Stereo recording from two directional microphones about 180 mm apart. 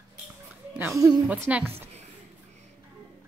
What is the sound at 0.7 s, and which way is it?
A woman's voice, 15° right (ahead or behind).